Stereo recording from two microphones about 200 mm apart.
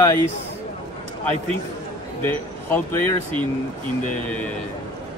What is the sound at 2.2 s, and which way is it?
Speech, 10° left (ahead or behind).